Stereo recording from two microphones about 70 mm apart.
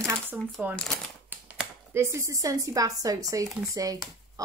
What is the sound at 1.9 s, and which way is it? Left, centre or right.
A woman's voice, right.